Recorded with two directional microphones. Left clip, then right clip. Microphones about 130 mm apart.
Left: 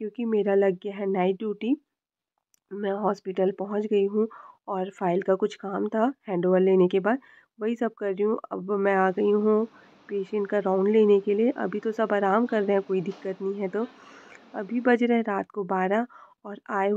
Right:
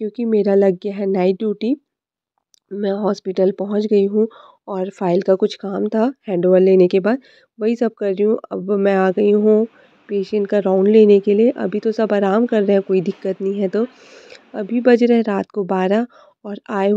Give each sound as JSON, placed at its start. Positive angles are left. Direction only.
{"t": 0.0, "sound": "speech", "side_deg": -35}
{"t": 0.8, "sound": "a woman's voice", "side_deg": -50}
{"t": 2.8, "sound": "a woman's voice", "side_deg": -50}
{"t": 3.1, "sound": "speech", "side_deg": -40}
{"t": 9.4, "sound": "speech", "side_deg": -25}
{"t": 10.0, "sound": "speech", "side_deg": -45}